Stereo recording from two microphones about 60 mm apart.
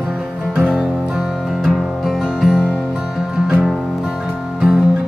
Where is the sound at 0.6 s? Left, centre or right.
Centre.